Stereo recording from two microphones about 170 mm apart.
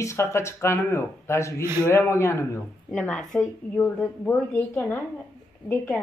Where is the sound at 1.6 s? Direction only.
15° right (ahead or behind).